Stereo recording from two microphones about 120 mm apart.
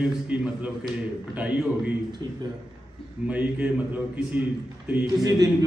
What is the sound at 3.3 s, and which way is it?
A man's voice, 15° right (ahead or behind).